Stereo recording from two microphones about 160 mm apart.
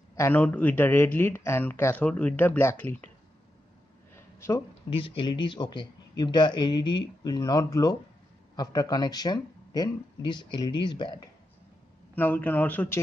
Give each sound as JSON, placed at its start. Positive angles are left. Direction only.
{"t": 0.1, "sound": "a man's voice", "side_deg": 15}
{"t": 4.1, "sound": "a sound", "side_deg": 15}
{"t": 4.8, "sound": "speech", "side_deg": 35}
{"t": 12.2, "sound": "a man's voice", "side_deg": 10}